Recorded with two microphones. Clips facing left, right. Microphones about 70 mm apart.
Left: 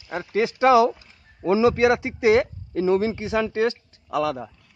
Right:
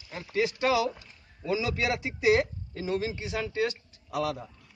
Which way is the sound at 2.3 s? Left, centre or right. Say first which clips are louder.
Left 6 dB; left.